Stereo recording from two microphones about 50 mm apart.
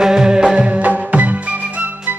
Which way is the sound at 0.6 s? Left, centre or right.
Right.